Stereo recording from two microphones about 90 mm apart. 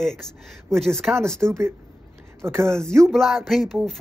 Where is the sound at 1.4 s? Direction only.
30° right (ahead or behind).